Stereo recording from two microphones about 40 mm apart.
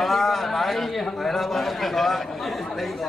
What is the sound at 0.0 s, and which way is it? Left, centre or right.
A man's voice, centre.